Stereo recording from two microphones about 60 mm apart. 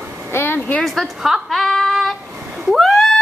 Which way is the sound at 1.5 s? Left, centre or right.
Centre.